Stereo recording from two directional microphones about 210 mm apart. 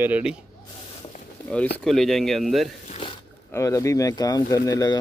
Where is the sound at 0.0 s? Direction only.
5° right (ahead or behind).